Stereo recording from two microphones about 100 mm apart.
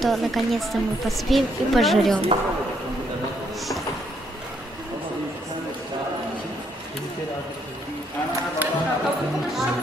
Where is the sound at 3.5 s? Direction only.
Centre (ahead or behind).